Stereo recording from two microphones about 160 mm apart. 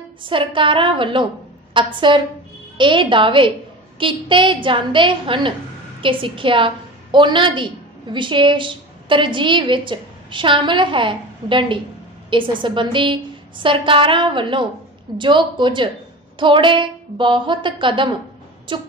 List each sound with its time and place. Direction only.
0.2 s a woman's voice: 30° right (ahead or behind)